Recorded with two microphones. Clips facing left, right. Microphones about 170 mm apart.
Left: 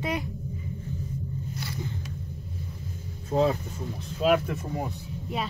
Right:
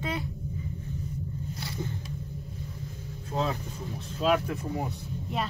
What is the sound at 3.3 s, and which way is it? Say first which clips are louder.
Speech: left 7 dB; 35° left (ahead or behind).